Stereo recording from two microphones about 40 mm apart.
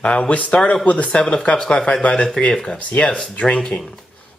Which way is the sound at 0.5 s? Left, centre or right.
Left.